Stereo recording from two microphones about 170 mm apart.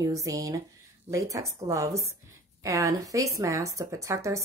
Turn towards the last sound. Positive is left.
turn(degrees=-15)  # may be behind; listen again after turning